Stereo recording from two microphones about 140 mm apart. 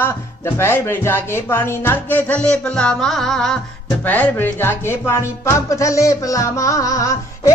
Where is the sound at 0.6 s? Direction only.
15° left (ahead or behind).